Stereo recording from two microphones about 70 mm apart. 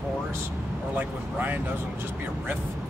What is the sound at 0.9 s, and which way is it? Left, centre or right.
Speech, right.